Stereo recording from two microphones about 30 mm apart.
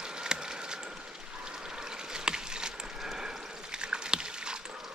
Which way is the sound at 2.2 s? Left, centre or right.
Right.